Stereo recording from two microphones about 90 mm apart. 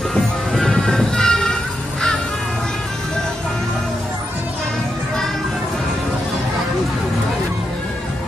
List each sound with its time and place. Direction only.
0.1 s music: 5° left (ahead or behind)